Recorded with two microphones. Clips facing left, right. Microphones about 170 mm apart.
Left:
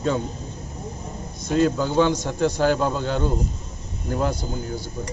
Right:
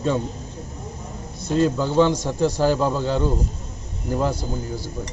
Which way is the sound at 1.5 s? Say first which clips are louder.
Right 1 dB; centre (ahead or behind).